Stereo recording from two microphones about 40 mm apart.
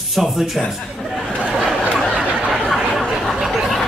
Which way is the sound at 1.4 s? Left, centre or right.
Centre.